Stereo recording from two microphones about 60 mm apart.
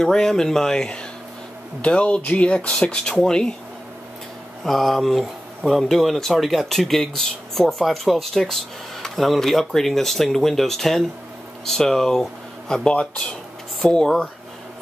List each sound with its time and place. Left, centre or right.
0.0 s speech: centre
4.6 s speech: centre
13.7 s speech: centre